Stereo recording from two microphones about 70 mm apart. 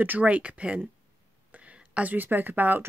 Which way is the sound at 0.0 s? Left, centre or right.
Right.